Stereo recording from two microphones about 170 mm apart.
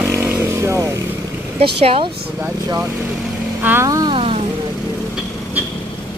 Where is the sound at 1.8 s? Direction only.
35° right (ahead or behind).